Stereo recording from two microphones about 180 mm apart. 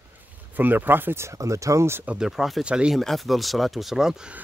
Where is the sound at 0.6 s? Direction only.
10° right (ahead or behind).